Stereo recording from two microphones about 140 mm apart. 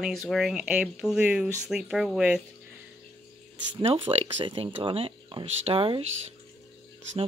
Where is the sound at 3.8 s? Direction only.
40° right (ahead or behind).